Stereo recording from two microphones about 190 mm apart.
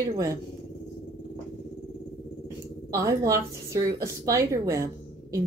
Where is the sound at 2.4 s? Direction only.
15° right (ahead or behind).